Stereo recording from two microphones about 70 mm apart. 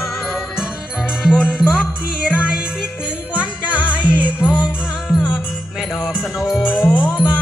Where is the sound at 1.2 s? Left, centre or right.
Centre.